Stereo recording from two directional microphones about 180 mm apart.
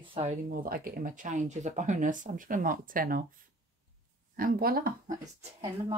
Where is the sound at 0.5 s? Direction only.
50° right (ahead or behind).